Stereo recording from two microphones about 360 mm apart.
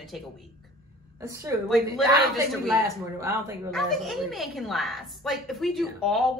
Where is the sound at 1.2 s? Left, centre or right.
Centre.